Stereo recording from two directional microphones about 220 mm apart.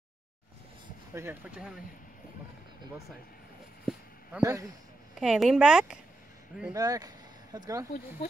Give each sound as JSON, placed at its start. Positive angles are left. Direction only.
{"t": 1.1, "sound": "speech", "side_deg": -10}
{"t": 3.8, "sound": "a sound", "side_deg": -10}
{"t": 5.2, "sound": "speech", "side_deg": 0}
{"t": 6.6, "sound": "speech", "side_deg": -15}